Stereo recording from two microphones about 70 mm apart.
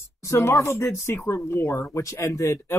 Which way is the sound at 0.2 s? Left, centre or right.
Left.